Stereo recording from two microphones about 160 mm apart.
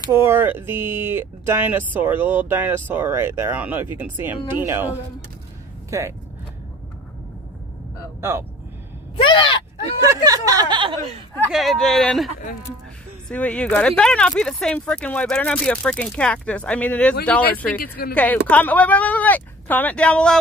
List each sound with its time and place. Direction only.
0.2 s speech: 15° right (ahead or behind)
8.2 s speech: 15° right (ahead or behind)
9.1 s groan: 35° left (ahead or behind)
10.0 s a sound: 25° right (ahead or behind)
11.5 s speech: centre (ahead or behind)
13.3 s speech: 10° left (ahead or behind)
18.1 s speech: 10° left (ahead or behind)